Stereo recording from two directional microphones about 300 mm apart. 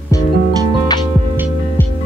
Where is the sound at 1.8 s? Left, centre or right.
Centre.